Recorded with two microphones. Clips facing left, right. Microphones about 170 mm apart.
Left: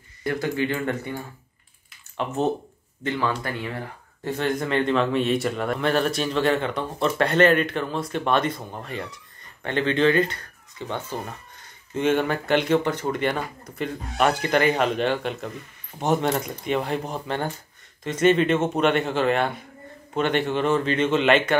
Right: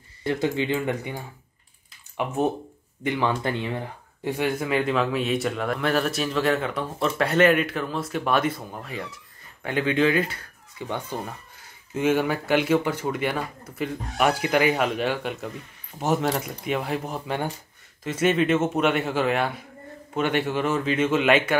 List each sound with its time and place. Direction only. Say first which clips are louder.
0.2 s speech: even; 20° right (ahead or behind); by 21.5 s 5° right (ahead or behind)